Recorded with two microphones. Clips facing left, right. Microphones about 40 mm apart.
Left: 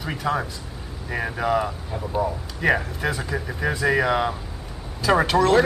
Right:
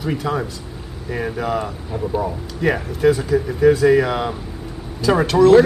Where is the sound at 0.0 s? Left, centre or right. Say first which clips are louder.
Right 3 dB; centre.